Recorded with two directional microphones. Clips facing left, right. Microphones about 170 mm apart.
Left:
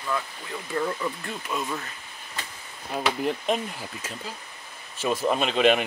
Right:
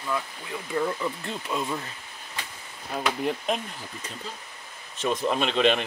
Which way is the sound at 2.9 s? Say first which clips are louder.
Left 1 dB; centre (ahead or behind).